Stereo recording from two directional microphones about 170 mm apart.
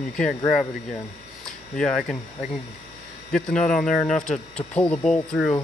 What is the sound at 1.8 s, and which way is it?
Speech, centre (ahead or behind).